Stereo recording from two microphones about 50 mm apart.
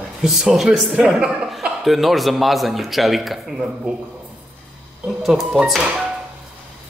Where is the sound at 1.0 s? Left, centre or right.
Centre.